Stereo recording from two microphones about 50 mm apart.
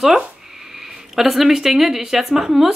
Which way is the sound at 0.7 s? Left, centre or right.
Centre.